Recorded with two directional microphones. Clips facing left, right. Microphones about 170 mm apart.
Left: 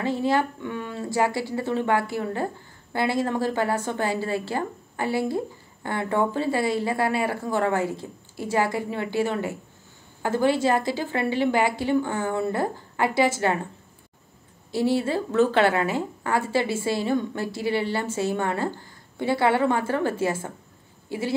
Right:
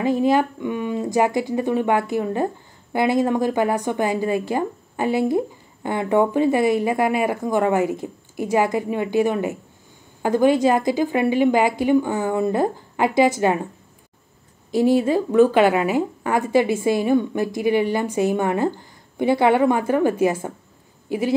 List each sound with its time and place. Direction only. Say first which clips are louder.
0.0 s speech: right 5 dB; 15° right (ahead or behind)
14.7 s speech: right 6 dB; 15° right (ahead or behind)